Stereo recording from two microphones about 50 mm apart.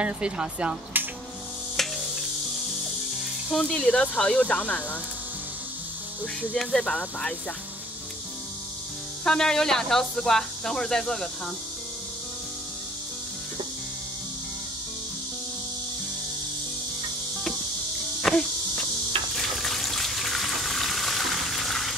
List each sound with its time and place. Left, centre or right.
0.0 s speech: right
1.0 s music: right
1.8 s music: centre
3.7 s speech: centre
6.5 s speech: centre
9.2 s speech: centre
18.3 s insect: centre
19.3 s water: centre